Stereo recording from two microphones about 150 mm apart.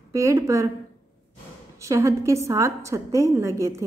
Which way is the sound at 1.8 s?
20° right (ahead or behind).